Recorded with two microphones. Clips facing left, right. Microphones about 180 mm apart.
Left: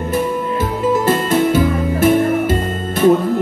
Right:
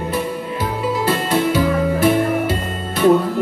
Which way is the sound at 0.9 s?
45° left (ahead or behind).